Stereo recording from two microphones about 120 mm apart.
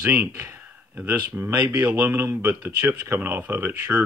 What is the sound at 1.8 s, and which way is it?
Speech, 20° right (ahead or behind).